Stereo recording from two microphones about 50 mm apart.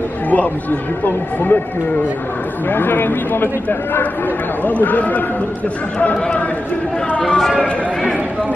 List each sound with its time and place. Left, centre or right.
0.3 s speech: left
2.7 s speech: left
7.1 s speech: left